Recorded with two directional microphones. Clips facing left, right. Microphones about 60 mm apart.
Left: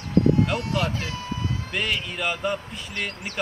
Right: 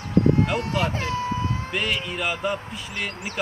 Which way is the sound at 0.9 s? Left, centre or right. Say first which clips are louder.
Right 5 dB; right.